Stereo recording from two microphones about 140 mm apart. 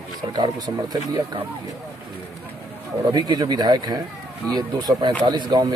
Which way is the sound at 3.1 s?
30° right (ahead or behind).